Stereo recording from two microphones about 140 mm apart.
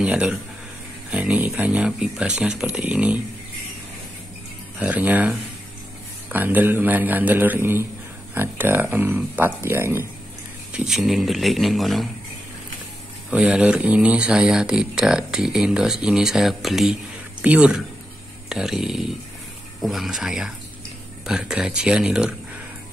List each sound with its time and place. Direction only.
0.0 s speech: 10° right (ahead or behind)
4.7 s speech: 10° right (ahead or behind)
10.7 s speech: 5° right (ahead or behind)
13.3 s speech: 5° right (ahead or behind)